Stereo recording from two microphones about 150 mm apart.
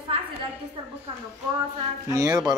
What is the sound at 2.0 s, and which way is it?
Speech, 20° right (ahead or behind).